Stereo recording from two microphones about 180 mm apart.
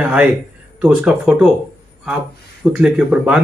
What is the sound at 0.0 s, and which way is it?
Speech, 5° right (ahead or behind).